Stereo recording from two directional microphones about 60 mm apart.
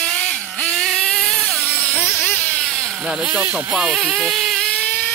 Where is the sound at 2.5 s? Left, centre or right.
Centre.